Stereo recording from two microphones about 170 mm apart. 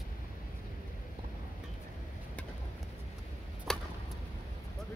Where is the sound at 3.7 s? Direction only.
5° left (ahead or behind).